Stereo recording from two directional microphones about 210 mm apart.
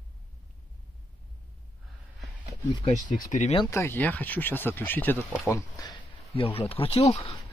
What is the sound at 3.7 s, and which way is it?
Speech, 10° left (ahead or behind).